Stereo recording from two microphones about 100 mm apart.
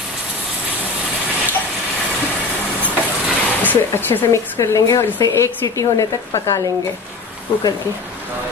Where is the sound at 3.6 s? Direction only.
20° left (ahead or behind).